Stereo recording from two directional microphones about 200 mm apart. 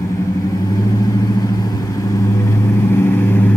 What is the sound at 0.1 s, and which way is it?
Vehicle, 15° left (ahead or behind).